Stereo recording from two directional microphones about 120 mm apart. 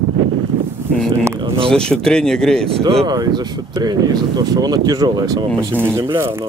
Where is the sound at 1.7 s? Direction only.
5° left (ahead or behind).